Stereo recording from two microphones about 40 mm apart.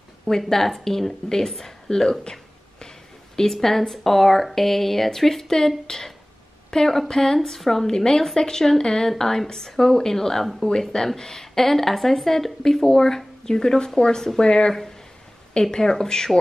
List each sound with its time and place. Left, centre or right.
0.4 s speech: centre
3.6 s speech: centre